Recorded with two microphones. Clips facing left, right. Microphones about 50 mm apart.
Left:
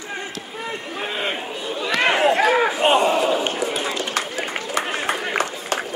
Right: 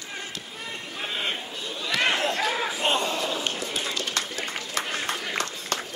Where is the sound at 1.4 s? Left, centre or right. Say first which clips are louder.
Left 7 dB; left.